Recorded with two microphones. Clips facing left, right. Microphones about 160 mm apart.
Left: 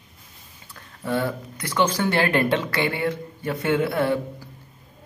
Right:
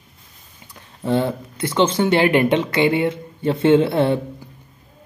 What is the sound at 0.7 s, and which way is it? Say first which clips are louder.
Speech: right 5 dB; 25° right (ahead or behind).